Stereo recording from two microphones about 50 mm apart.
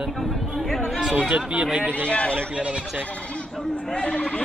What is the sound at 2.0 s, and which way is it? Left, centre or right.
Speech, left.